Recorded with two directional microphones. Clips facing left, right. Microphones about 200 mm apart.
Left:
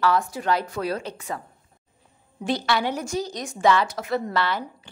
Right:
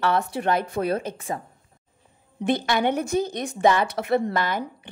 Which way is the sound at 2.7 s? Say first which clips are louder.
Right 3 dB; 55° right (ahead or behind).